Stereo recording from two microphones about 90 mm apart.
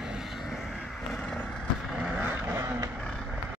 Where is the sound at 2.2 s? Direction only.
25° right (ahead or behind).